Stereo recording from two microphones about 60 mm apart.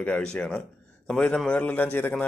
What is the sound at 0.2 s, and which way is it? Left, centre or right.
A man's voice, centre.